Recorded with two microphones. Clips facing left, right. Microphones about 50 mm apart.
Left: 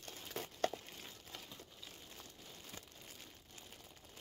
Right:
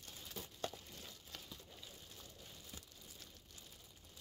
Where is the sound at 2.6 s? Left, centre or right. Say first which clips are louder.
Left 3 dB; left.